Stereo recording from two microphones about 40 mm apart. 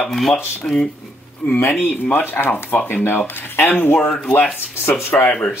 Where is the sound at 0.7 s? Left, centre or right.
Centre.